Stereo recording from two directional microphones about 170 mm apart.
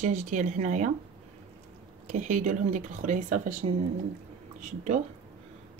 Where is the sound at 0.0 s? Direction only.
45° right (ahead or behind).